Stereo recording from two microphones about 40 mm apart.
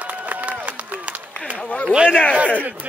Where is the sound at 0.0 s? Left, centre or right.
Right.